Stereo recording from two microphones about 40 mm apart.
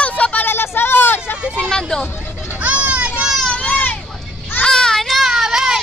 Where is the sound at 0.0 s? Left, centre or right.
Left.